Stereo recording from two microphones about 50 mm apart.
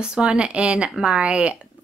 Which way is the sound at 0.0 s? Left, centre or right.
Centre.